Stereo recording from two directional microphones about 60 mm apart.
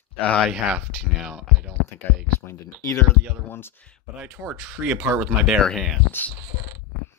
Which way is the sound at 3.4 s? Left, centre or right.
Left.